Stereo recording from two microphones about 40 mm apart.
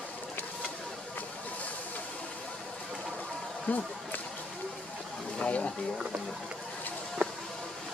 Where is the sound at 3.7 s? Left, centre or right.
Left.